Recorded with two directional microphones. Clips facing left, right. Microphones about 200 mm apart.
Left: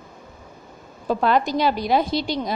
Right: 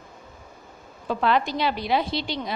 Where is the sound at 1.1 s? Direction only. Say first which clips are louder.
Left 3 dB; 40° left (ahead or behind).